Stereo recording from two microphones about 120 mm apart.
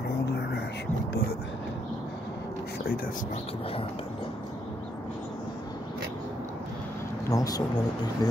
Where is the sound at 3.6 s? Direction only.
50° left (ahead or behind).